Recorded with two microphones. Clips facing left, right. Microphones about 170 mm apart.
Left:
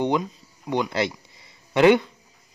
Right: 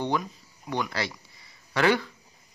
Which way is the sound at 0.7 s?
20° left (ahead or behind).